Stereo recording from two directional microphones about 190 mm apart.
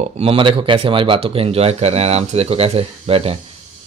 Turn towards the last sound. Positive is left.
turn(degrees=-30)  # may be behind; listen again after turning